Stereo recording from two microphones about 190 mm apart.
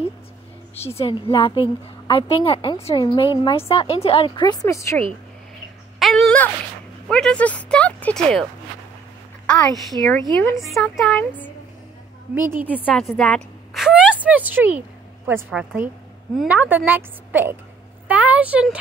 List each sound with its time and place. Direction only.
0.7 s a woman's voice: 30° left (ahead or behind); by 5.0 s 15° left (ahead or behind)
5.9 s a sound: centre (ahead or behind)
7.1 s speech: 5° left (ahead or behind)
10.3 s speech: 15° left (ahead or behind)
10.6 s speech: centre (ahead or behind)
12.4 s a woman's voice: 10° right (ahead or behind)
12.7 s a woman's voice: 5° left (ahead or behind)